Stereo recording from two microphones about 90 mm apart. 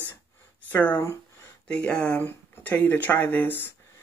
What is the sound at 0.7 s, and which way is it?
Speech, 20° left (ahead or behind).